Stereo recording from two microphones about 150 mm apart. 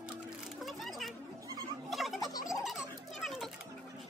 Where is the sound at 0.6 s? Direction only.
Centre (ahead or behind).